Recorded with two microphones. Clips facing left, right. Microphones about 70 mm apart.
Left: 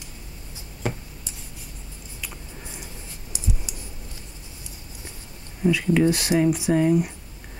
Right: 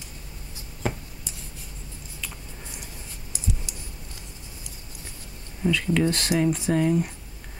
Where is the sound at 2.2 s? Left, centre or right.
Centre.